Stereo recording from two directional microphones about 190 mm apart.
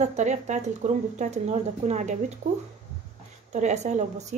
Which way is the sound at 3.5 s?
35° right (ahead or behind).